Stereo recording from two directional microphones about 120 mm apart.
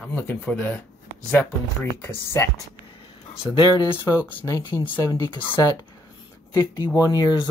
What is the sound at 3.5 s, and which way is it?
Speech, 35° left (ahead or behind).